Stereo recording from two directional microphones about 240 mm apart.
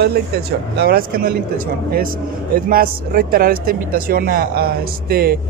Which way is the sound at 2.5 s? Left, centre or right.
Right.